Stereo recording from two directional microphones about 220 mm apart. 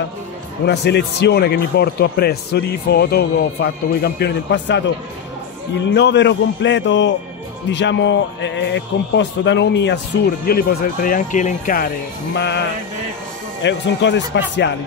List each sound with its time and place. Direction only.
0.7 s a man's voice: 50° left (ahead or behind)
12.4 s a man's voice: 50° left (ahead or behind)